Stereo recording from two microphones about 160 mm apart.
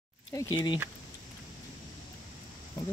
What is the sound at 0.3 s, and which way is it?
Speech, 25° left (ahead or behind).